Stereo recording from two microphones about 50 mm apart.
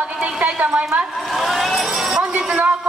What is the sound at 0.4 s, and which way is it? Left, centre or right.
Speech, right.